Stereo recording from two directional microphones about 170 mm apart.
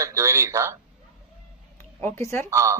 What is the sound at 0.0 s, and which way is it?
Speech, 20° right (ahead or behind).